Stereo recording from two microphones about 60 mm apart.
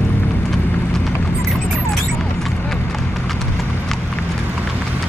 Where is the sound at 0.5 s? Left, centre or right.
Centre.